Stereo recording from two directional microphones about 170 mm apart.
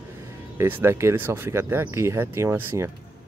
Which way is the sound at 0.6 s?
15° right (ahead or behind).